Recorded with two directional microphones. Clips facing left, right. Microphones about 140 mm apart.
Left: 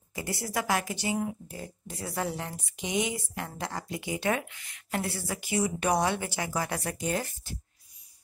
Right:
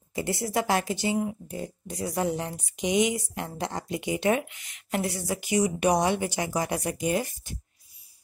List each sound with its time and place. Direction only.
0.1 s speech: 25° right (ahead or behind)